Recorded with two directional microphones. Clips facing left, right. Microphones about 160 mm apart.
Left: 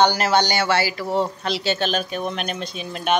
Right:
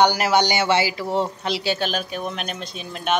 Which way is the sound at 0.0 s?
15° right (ahead or behind).